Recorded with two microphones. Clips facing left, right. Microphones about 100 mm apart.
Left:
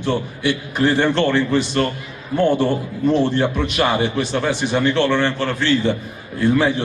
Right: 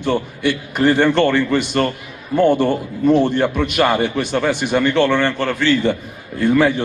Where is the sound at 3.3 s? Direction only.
55° right (ahead or behind).